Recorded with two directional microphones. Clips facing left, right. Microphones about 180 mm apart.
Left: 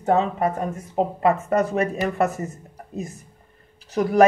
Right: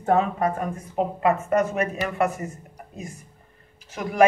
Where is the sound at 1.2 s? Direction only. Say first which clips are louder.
Left 1 dB; 35° left (ahead or behind).